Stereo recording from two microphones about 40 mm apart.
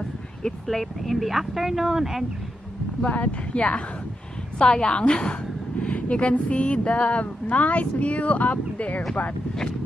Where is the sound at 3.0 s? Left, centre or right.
Left.